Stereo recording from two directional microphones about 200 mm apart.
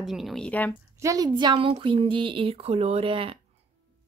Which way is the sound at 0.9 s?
15° right (ahead or behind).